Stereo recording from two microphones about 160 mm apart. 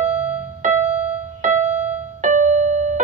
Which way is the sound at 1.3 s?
50° right (ahead or behind).